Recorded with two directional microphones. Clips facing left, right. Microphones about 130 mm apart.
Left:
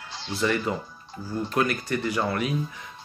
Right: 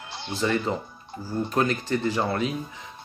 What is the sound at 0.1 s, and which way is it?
Music, 55° right (ahead or behind).